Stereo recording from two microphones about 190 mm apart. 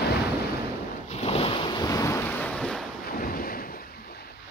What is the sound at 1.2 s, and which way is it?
Boat, 30° left (ahead or behind).